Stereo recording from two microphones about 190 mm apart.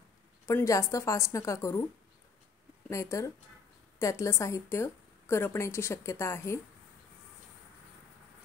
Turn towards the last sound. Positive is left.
turn(degrees=15)  # may be behind; listen again after turning